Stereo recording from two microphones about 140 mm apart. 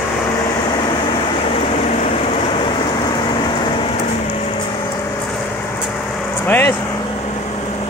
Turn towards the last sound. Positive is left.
turn(degrees=20)  # may be behind; listen again after turning